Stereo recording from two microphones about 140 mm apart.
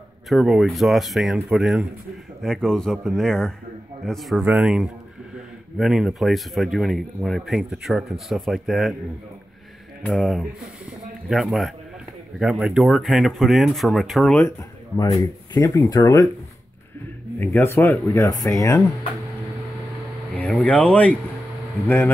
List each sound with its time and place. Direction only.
0.3 s speech: centre (ahead or behind)
10.0 s speech: centre (ahead or behind)
14.3 s speech: 15° left (ahead or behind)
17.4 s speech: 15° left (ahead or behind)
20.3 s speech: 10° left (ahead or behind)